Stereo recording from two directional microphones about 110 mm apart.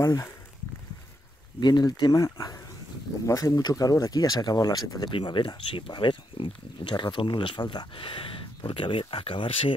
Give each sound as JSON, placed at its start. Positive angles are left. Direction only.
{"t": 0.0, "sound": "speech", "side_deg": 25}
{"t": 1.6, "sound": "speech", "side_deg": 40}
{"t": 5.1, "sound": "speech", "side_deg": 50}